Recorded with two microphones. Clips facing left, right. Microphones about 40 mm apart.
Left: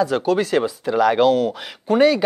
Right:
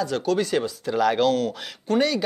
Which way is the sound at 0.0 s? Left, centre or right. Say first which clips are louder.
Left 5 dB; centre.